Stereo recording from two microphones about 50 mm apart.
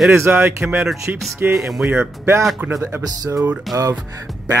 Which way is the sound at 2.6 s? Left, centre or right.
Right.